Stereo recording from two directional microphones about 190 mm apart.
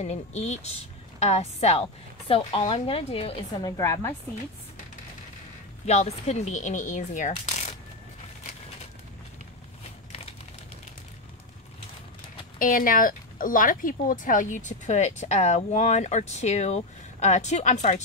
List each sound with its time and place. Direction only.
0.0 s speech: 35° left (ahead or behind); by 4.1 s 15° left (ahead or behind)
5.9 s speech: 35° left (ahead or behind)
12.5 s speech: 45° left (ahead or behind)